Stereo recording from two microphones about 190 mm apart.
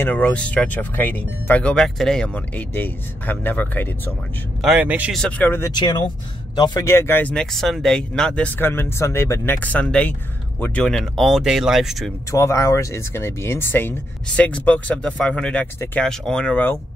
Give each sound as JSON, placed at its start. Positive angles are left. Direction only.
{"t": 0.0, "sound": "speech", "side_deg": 10}
{"t": 4.6, "sound": "a man's voice", "side_deg": -5}
{"t": 5.2, "sound": "speech", "side_deg": 10}
{"t": 5.8, "sound": "speech", "side_deg": 25}
{"t": 12.3, "sound": "speech", "side_deg": 15}